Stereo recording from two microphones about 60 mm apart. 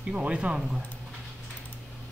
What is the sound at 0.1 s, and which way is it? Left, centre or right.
Speech, centre.